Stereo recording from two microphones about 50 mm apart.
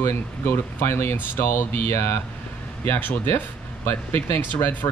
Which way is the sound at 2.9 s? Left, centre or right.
Left.